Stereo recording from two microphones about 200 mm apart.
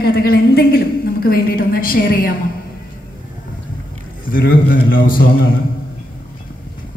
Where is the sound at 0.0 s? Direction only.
50° left (ahead or behind).